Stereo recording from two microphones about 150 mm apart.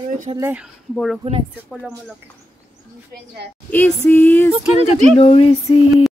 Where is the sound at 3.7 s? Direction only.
10° left (ahead or behind).